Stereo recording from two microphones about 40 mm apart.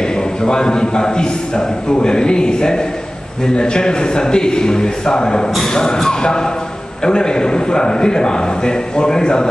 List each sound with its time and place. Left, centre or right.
0.4 s a man's voice: centre